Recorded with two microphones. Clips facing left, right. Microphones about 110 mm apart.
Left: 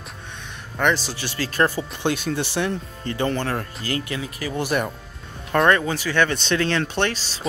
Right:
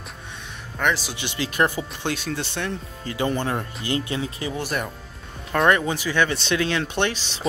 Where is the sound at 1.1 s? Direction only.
20° right (ahead or behind).